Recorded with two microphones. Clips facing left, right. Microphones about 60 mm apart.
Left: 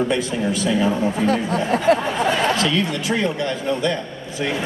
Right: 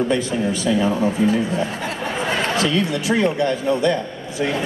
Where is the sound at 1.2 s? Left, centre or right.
Left.